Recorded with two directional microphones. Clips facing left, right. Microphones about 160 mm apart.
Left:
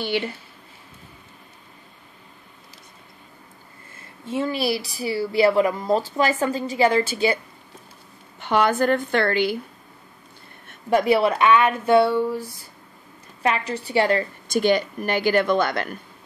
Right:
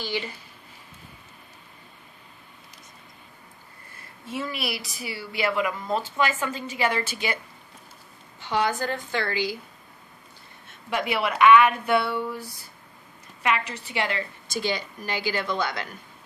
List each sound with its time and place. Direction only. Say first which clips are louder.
0.0 s speech: left 6 dB; 60° left (ahead or behind)
4.3 s speech: left 8 dB; 30° left (ahead or behind)
8.4 s speech: left 6 dB; 60° left (ahead or behind)
10.9 s speech: left 8 dB; 40° left (ahead or behind)
14.5 s speech: left 10 dB; 55° left (ahead or behind)